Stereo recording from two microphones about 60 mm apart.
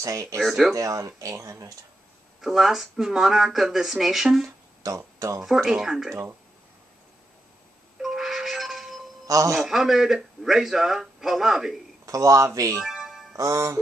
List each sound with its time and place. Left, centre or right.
0.0 s a man's voice: right
0.4 s a man's voice: centre
0.7 s speech: right
2.4 s a man's voice: centre
4.8 s speech: right
5.4 s a man's voice: centre
8.0 s music: centre
9.5 s a man's voice: centre
12.1 s a man's voice: right
12.7 s music: centre
13.4 s speech: right